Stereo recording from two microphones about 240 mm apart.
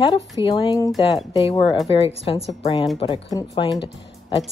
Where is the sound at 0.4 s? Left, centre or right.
Left.